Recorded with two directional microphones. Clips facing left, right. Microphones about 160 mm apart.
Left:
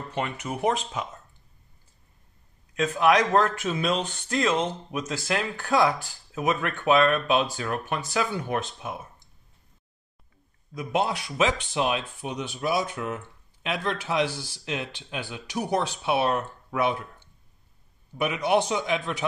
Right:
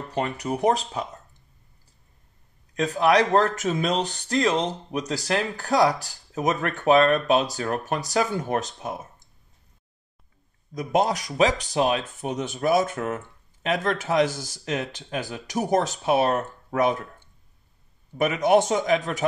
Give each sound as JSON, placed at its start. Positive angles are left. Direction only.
{"t": 0.1, "sound": "speech", "side_deg": -35}
{"t": 2.7, "sound": "speech", "side_deg": -35}
{"t": 10.7, "sound": "speech", "side_deg": -40}
{"t": 18.1, "sound": "speech", "side_deg": -45}